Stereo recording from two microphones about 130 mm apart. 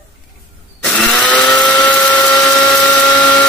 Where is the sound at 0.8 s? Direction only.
5° left (ahead or behind).